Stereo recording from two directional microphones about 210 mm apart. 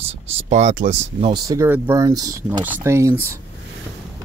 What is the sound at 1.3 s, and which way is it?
Speech, 15° right (ahead or behind).